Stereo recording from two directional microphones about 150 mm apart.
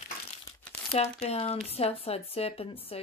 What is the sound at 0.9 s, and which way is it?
Speech, 45° left (ahead or behind).